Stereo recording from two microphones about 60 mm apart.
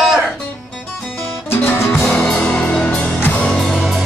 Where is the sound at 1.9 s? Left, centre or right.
Centre.